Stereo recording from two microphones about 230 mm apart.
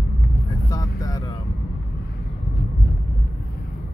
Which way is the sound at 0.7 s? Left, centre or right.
Centre.